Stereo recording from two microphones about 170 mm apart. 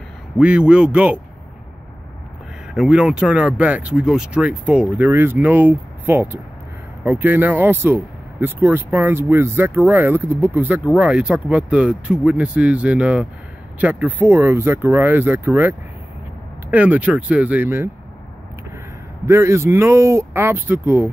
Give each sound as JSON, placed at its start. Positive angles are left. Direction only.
{"t": 0.4, "sound": "speech", "side_deg": -5}
{"t": 2.7, "sound": "speech", "side_deg": -5}
{"t": 16.7, "sound": "speech", "side_deg": -10}
{"t": 19.2, "sound": "speech", "side_deg": -15}